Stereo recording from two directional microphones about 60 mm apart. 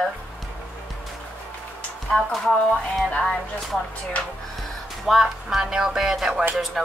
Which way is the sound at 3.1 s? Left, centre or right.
Centre.